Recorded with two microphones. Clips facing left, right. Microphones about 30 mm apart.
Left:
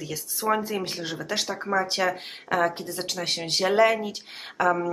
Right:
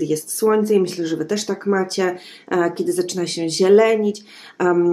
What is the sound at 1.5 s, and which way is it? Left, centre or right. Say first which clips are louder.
A woman's voice: right 5 dB; centre.